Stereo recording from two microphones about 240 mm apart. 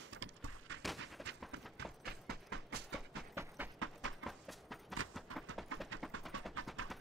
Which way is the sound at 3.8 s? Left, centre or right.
Right.